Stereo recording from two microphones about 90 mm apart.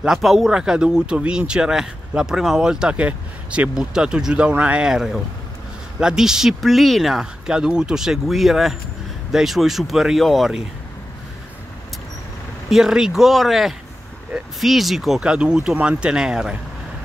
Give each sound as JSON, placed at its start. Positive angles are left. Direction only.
{"t": 0.0, "sound": "speech", "side_deg": -5}
{"t": 12.6, "sound": "speech", "side_deg": -5}